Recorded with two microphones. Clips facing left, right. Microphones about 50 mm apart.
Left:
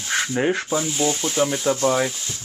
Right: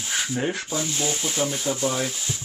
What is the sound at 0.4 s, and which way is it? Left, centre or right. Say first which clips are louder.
Rub: left 7 dB; left.